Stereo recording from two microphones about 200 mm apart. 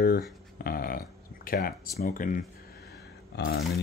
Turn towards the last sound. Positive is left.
turn(degrees=55)  # may be behind; listen again after turning